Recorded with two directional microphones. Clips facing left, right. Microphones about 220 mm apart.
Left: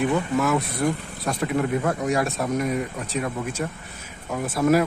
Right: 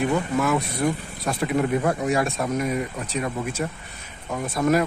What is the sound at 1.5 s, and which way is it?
Speech, 15° right (ahead or behind).